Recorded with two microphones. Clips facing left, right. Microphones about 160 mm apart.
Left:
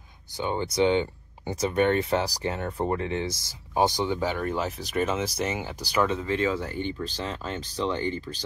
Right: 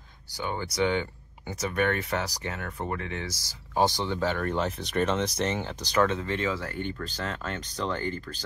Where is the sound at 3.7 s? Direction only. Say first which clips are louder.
Left 2 dB; 15° left (ahead or behind).